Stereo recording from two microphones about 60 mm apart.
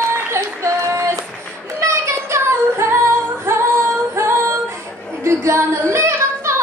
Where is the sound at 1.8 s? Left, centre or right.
Right.